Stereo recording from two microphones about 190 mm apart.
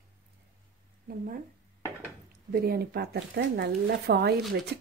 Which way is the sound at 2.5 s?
55° right (ahead or behind).